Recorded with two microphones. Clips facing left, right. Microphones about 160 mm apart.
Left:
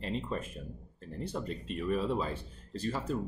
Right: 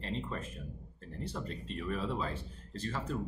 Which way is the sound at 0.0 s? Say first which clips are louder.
Left 3 dB; 15° left (ahead or behind).